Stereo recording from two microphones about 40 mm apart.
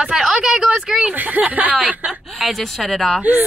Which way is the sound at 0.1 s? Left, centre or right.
Centre.